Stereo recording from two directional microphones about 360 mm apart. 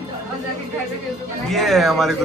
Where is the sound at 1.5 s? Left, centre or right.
Centre.